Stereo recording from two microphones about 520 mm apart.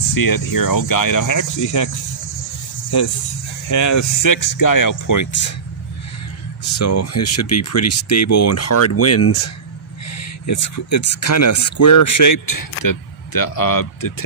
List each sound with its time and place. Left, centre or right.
0.1 s speech: left
3.6 s speech: left
6.6 s speech: left